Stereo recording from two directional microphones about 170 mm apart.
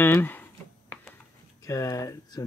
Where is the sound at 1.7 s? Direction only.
20° left (ahead or behind).